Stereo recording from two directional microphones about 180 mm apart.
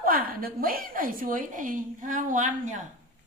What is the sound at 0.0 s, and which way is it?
A woman's voice, 50° right (ahead or behind).